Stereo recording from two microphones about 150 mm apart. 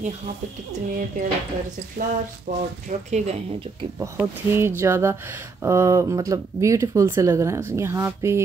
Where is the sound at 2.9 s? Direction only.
55° right (ahead or behind).